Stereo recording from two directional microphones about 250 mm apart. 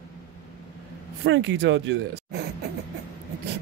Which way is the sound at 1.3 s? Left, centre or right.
Right.